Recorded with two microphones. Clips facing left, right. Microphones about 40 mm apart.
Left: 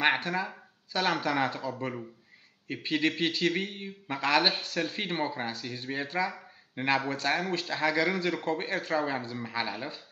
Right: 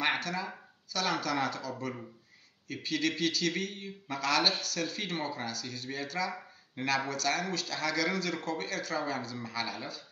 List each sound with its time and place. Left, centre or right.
0.0 s a man's voice: left